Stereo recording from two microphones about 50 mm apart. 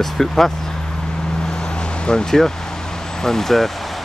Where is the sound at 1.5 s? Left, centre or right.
Centre.